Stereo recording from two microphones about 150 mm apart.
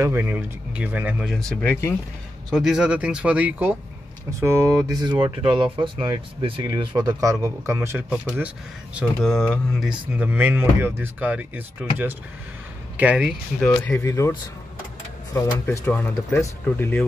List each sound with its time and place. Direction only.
0.0 s speech: 15° right (ahead or behind)
1.6 s speech: 15° left (ahead or behind)
2.5 s speech: 5° right (ahead or behind)
8.9 s speech: centre (ahead or behind)
9.8 s speech: 10° right (ahead or behind)
13.6 s a man's voice: 10° left (ahead or behind)
15.3 s speech: 15° left (ahead or behind)